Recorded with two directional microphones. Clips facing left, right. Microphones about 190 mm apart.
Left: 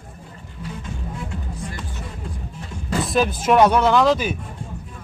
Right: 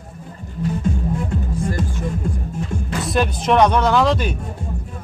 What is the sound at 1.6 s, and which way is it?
Music, 45° right (ahead or behind).